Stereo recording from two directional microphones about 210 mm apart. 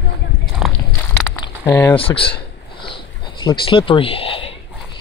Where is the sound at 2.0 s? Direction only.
25° left (ahead or behind).